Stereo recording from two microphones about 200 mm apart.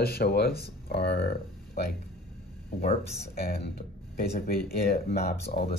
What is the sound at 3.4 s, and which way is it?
Speech, 55° left (ahead or behind).